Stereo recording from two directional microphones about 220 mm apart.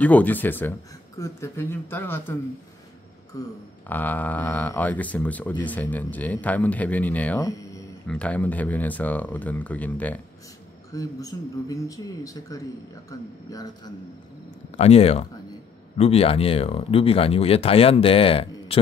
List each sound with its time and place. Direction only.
0.0 s speech: 5° left (ahead or behind)
3.3 s speech: 15° left (ahead or behind)
14.8 s speech: 25° left (ahead or behind)